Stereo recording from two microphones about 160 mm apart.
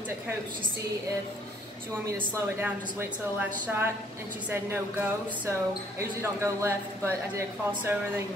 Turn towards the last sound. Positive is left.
turn(degrees=-15)  # may be behind; listen again after turning